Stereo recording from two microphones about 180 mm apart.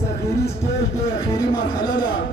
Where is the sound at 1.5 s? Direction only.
20° left (ahead or behind).